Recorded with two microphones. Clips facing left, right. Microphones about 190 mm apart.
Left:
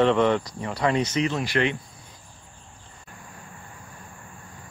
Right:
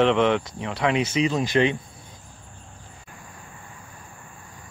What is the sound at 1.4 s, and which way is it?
Speech, 20° right (ahead or behind).